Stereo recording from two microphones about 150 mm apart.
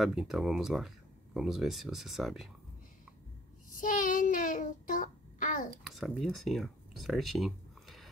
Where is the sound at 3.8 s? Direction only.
60° left (ahead or behind).